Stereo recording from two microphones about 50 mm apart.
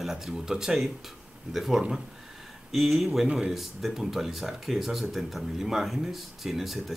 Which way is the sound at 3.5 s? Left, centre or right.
Centre.